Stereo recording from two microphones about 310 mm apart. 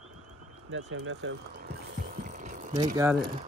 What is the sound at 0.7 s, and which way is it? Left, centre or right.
Speech, right.